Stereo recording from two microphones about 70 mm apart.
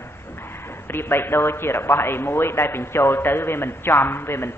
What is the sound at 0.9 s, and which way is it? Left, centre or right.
A woman's voice, left.